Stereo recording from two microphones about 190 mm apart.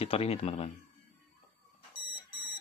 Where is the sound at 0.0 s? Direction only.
30° left (ahead or behind).